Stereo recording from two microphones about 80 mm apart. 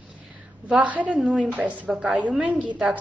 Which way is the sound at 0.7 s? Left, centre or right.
Centre.